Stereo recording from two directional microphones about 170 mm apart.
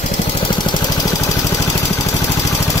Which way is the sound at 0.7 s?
25° left (ahead or behind).